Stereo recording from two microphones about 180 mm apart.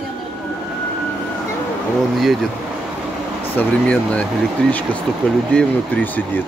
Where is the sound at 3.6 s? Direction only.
5° left (ahead or behind).